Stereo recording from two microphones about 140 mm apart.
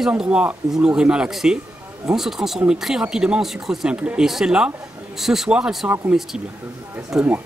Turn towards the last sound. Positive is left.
turn(degrees=-5)  # may be behind; listen again after turning